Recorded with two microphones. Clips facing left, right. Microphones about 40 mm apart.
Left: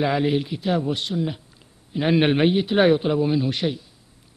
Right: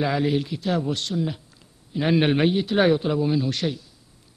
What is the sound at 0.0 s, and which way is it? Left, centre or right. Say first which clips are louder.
A man's voice: left 2 dB; left.